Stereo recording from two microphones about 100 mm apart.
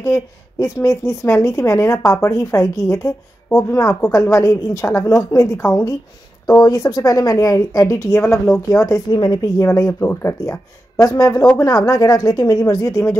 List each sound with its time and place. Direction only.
0.0 s a woman's voice: 30° left (ahead or behind)